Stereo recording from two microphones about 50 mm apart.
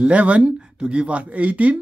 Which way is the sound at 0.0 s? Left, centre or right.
Right.